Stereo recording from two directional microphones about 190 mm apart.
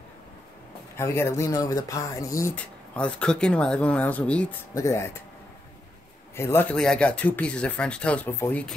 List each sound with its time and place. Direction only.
0.9 s speech: 15° left (ahead or behind)
2.5 s speech: 5° left (ahead or behind)
6.3 s speech: 10° left (ahead or behind)